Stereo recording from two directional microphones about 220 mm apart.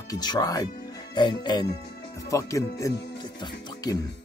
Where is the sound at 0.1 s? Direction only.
20° left (ahead or behind).